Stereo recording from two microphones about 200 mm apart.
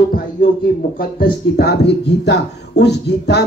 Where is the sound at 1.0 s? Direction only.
50° left (ahead or behind).